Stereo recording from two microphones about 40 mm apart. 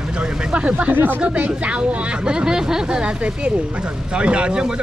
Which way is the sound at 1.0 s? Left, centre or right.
Right.